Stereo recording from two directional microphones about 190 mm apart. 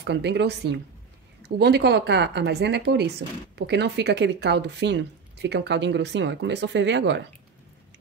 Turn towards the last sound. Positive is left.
turn(degrees=-70)  # may be behind; listen again after turning